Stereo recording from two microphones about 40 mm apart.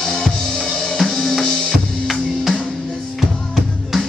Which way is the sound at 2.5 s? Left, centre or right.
Centre.